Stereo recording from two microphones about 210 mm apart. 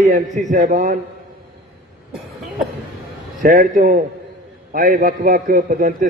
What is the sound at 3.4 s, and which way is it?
A man's voice, 40° right (ahead or behind).